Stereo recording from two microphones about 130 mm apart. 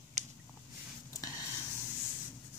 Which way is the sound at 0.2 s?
65° right (ahead or behind).